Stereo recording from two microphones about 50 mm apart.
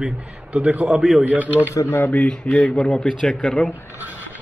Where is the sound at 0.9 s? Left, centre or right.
Centre.